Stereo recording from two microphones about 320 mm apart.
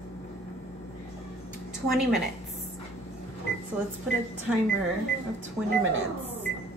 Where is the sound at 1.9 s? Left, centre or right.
Centre.